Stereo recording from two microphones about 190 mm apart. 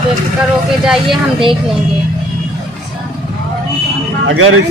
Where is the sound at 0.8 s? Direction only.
Centre (ahead or behind).